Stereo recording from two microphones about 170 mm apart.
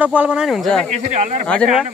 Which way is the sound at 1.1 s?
45° right (ahead or behind).